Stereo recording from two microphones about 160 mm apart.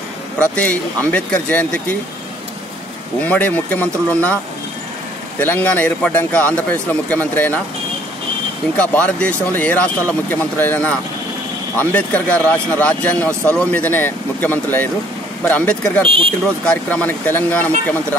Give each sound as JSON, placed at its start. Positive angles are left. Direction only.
{"t": 0.4, "sound": "speech", "side_deg": 10}
{"t": 3.2, "sound": "speech", "side_deg": 10}
{"t": 5.4, "sound": "speech", "side_deg": 10}
{"t": 8.7, "sound": "speech", "side_deg": 10}
{"t": 16.1, "sound": "speech", "side_deg": -35}
{"t": 16.6, "sound": "speech", "side_deg": 10}